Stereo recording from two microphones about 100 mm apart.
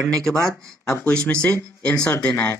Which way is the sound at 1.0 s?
10° left (ahead or behind).